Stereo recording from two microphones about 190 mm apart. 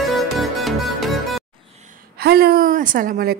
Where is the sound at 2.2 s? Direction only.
55° right (ahead or behind).